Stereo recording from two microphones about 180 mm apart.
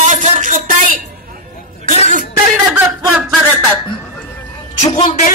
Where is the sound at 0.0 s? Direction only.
45° right (ahead or behind).